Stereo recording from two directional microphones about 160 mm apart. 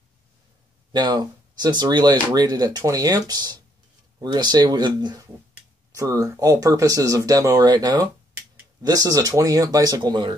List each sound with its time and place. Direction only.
0.9 s speech: 25° right (ahead or behind)